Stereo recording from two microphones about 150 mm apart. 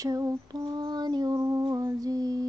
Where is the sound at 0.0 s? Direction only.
25° right (ahead or behind).